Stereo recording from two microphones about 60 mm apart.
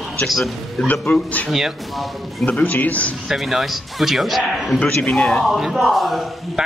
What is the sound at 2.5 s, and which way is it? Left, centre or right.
Speech, left.